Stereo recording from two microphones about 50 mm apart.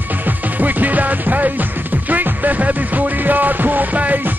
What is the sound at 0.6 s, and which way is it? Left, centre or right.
Music, right.